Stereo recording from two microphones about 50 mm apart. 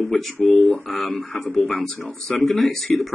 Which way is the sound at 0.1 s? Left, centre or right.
Centre.